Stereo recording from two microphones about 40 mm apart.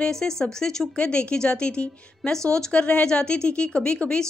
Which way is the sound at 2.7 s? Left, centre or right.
Left.